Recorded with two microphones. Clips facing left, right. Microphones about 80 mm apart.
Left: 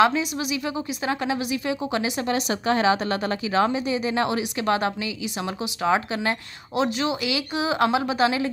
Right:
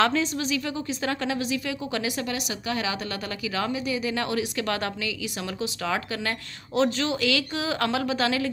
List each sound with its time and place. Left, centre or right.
0.0 s a woman's voice: centre
2.3 s a woman's voice: left